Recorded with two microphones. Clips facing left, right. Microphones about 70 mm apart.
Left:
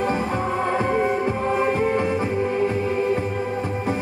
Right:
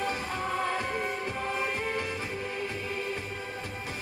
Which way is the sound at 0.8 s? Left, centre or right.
Left.